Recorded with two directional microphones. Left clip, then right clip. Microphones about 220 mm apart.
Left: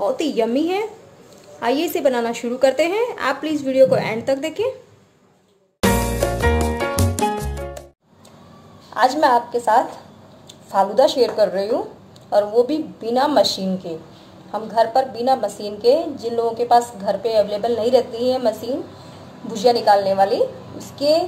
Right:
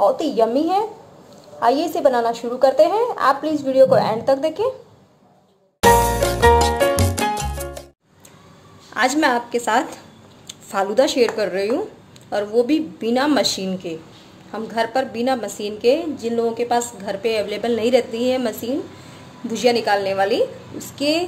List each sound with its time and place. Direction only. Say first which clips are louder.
0.0 s a woman's voice: right 3 dB; 25° left (ahead or behind)
5.9 s music: right 6 dB; centre (ahead or behind)
9.0 s a woman's voice: left 3 dB; 35° right (ahead or behind)
10.7 s a woman's voice: left 2 dB; 35° right (ahead or behind)
19.8 s a woman's voice: left 4 dB; 35° right (ahead or behind)